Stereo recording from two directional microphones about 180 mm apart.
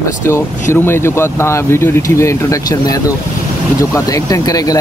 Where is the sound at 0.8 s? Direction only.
15° left (ahead or behind).